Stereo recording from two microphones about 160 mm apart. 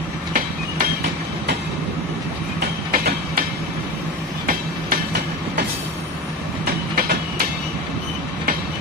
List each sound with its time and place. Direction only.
0.3 s train: 65° right (ahead or behind)
2.9 s train: 60° right (ahead or behind)
4.5 s train: 70° right (ahead or behind)